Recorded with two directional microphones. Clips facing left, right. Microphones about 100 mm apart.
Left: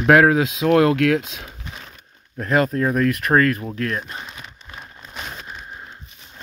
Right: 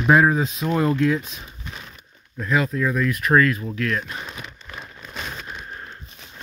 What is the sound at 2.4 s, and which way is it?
Speech, 50° left (ahead or behind).